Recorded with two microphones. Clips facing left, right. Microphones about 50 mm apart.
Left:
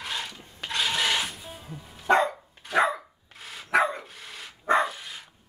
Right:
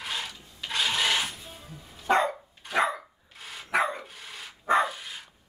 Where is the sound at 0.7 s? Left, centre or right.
Centre.